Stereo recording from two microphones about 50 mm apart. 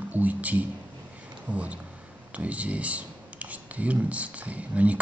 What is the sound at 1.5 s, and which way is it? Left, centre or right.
Speech, right.